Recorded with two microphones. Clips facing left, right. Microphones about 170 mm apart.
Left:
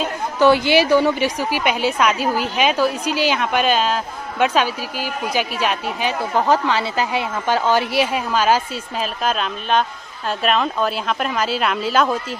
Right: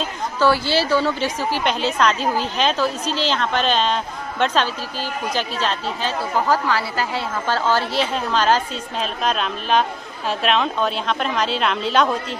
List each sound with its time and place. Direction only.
0.4 s a woman's voice: 20° left (ahead or behind)